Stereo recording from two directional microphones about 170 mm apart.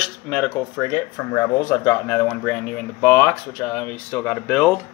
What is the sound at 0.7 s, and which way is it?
Speech, 20° left (ahead or behind).